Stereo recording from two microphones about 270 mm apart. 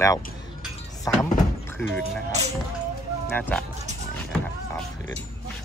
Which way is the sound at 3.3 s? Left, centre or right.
Centre.